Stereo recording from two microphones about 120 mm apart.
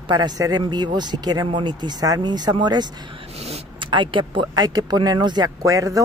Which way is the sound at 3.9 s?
40° right (ahead or behind).